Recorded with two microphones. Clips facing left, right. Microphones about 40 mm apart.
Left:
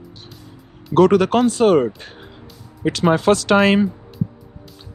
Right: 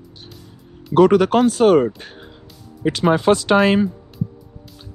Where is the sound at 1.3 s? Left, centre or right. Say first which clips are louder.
Right 1 dB; centre.